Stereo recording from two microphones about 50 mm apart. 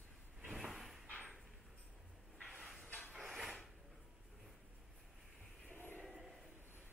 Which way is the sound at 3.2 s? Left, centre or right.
Centre.